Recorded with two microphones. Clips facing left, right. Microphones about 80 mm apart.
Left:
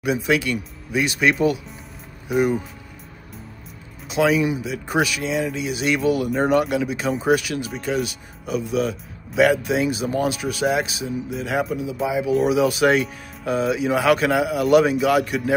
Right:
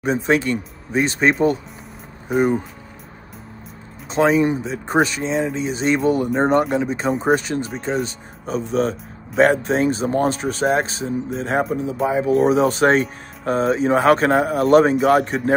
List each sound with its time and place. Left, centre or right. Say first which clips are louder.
0.0 s speech: right 2 dB; right
4.1 s speech: right 3 dB; right